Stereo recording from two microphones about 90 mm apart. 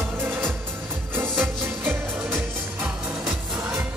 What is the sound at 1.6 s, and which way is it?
Music, 25° right (ahead or behind).